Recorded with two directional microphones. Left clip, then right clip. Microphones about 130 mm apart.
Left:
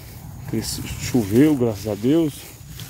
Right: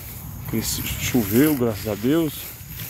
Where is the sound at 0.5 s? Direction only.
40° left (ahead or behind).